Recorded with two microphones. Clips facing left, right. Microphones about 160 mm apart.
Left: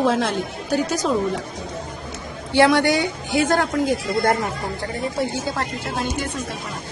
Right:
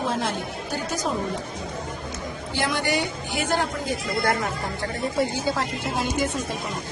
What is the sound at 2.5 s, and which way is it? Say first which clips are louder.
Speech: left 11 dB; 80° left.